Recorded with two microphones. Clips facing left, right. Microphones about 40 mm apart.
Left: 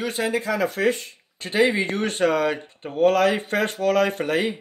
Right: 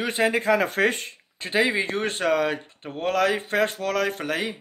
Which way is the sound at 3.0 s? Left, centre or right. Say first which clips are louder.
Left 5 dB; left.